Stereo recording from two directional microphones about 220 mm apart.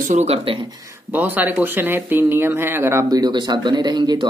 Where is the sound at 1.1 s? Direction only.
10° right (ahead or behind).